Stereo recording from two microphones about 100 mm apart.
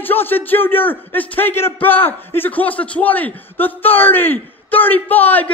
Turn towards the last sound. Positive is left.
turn(degrees=15)  # may be behind; listen again after turning